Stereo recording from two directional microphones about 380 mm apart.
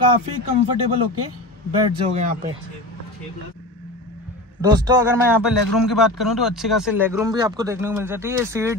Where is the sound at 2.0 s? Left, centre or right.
Centre.